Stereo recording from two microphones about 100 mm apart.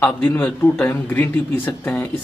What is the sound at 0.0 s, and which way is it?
A man's voice, 15° left (ahead or behind).